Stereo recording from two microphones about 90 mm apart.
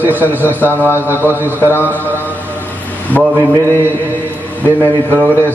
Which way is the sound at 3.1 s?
20° left (ahead or behind).